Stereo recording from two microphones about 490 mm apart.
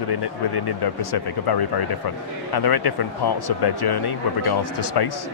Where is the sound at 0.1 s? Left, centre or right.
Left.